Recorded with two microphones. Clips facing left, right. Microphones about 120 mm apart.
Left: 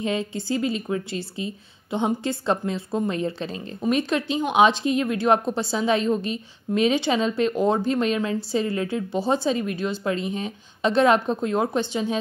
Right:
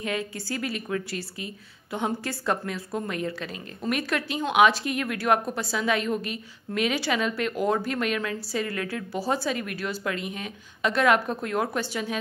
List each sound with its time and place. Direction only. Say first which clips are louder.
0.0 s a woman's voice: left 4 dB; 25° left (ahead or behind)